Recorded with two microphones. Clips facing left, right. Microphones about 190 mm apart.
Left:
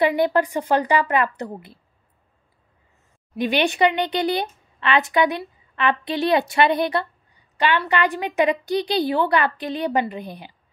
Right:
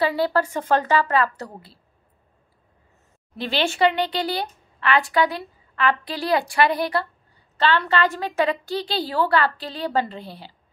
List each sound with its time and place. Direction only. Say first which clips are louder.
0.0 s a woman's voice: left 3 dB; 20° left (ahead or behind)
3.3 s a woman's voice: left 3 dB; 15° left (ahead or behind)